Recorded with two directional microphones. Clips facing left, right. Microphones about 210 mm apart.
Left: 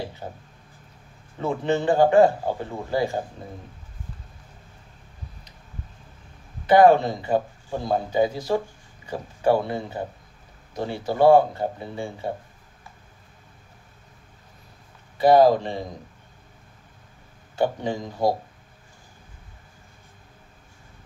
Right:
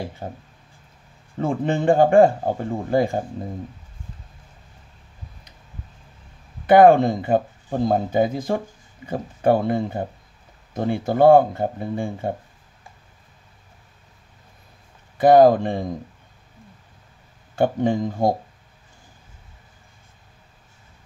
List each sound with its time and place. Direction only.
1.4 s speech: 50° right (ahead or behind)
6.6 s speech: 55° right (ahead or behind)
15.1 s speech: 50° right (ahead or behind)
17.6 s speech: 50° right (ahead or behind)